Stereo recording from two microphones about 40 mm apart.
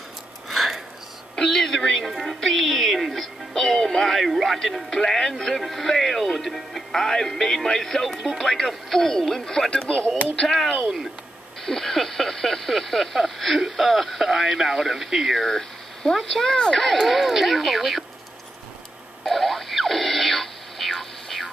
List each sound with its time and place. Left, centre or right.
0.5 s a sound: centre
1.3 s speech: centre
11.6 s speech: centre
15.4 s speech: centre
16.8 s speech: centre
19.2 s a sound: centre